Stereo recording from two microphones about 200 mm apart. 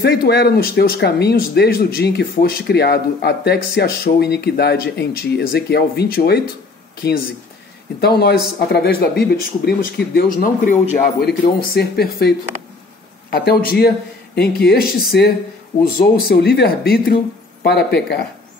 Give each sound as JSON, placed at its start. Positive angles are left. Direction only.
{"t": 0.0, "sound": "speech", "side_deg": 55}
{"t": 8.0, "sound": "speech", "side_deg": 55}
{"t": 15.8, "sound": "speech", "side_deg": 50}